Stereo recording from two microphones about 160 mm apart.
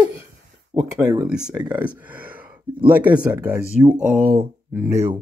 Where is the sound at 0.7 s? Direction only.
35° right (ahead or behind).